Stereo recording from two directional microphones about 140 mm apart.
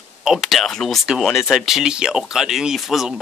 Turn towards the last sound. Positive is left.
turn(degrees=0)  # may be behind; listen again after turning